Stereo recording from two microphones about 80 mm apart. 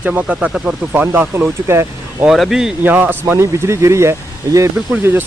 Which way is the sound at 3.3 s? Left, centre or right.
Right.